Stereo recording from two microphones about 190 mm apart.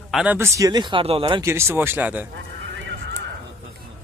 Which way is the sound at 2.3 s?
75° right (ahead or behind).